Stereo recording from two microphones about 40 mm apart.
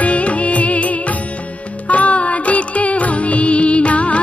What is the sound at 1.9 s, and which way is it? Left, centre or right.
Music, left.